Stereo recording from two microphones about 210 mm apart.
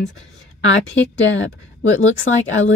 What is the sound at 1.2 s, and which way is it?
Speech, 65° left (ahead or behind).